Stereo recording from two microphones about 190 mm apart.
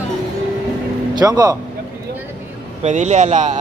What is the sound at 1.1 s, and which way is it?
Speech, 20° right (ahead or behind).